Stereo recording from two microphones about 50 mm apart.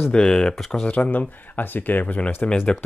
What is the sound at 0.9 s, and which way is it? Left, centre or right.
Speech, left.